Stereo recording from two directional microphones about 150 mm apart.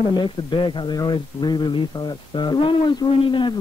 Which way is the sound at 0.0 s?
30° left (ahead or behind).